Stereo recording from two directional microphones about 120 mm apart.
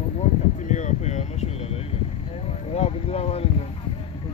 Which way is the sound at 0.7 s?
80° left.